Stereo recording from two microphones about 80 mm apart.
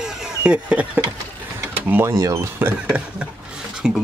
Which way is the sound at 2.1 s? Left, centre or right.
Right.